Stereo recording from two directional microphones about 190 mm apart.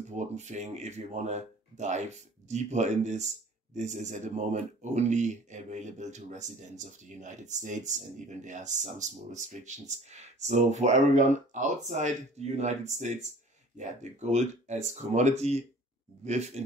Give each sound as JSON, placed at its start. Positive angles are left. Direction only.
{"t": 0.1, "sound": "speech", "side_deg": -40}